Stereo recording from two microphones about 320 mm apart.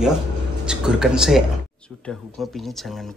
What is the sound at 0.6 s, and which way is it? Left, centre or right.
Speech, centre.